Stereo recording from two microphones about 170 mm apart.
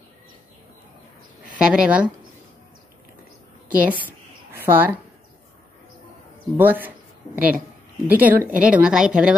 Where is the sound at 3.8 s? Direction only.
10° right (ahead or behind).